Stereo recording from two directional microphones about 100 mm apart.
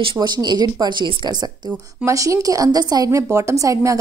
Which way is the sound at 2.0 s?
35° right (ahead or behind).